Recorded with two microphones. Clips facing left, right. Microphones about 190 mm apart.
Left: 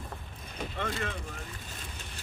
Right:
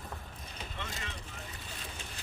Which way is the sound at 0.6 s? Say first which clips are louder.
Left 10 dB; 50° left (ahead or behind).